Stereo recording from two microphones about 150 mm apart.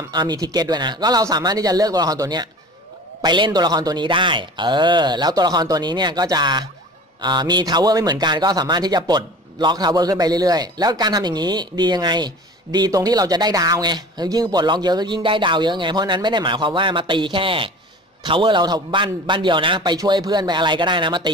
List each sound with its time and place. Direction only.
0.1 s a man's voice: 30° right (ahead or behind)